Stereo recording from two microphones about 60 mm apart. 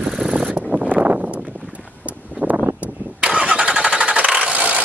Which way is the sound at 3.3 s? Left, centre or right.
Centre.